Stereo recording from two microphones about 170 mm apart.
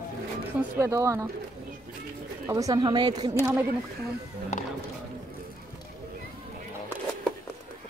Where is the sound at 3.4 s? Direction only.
10° right (ahead or behind).